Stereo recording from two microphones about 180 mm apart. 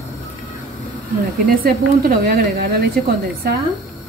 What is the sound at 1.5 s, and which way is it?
A woman's voice, 55° right (ahead or behind).